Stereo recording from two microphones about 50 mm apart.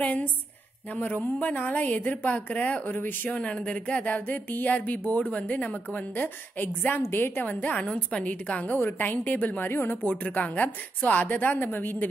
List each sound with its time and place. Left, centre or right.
0.0 s a woman's voice: left
3.3 s a woman's voice: left
7.0 s a woman's voice: left
7.4 s a woman's voice: left
9.7 s a woman's voice: left
10.0 s a woman's voice: left